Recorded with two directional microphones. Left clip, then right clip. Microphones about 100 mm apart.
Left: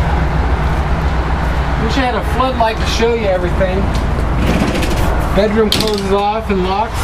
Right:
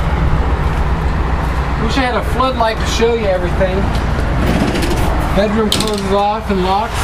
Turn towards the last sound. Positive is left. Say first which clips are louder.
# even
turn(degrees=0)  # may be behind; listen again after turning